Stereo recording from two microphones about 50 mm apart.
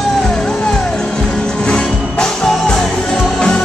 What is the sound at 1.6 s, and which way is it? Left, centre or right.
Music, centre.